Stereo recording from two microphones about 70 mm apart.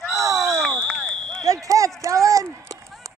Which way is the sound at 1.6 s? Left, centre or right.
Right.